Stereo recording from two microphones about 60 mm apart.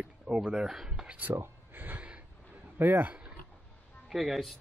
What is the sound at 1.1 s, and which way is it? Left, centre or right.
Speech, right.